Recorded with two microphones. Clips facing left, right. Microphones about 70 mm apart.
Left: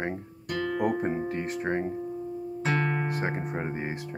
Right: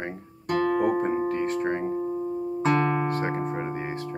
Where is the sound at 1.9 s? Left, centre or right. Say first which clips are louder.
Right 6 dB; right.